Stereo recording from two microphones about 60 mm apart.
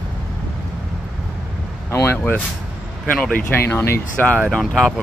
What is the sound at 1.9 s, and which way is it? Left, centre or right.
Speech, left.